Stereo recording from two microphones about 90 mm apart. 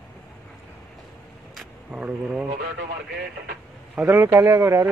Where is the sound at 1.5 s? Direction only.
10° right (ahead or behind).